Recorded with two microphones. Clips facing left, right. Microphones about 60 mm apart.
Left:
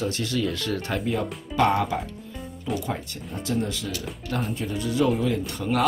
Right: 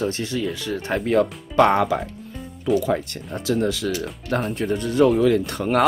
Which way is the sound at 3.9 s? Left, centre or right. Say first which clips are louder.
Right 5 dB; right.